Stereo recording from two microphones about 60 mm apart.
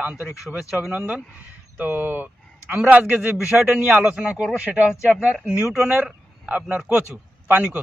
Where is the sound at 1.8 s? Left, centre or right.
Right.